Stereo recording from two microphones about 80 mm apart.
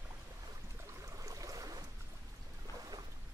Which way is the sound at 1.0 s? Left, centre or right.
Right.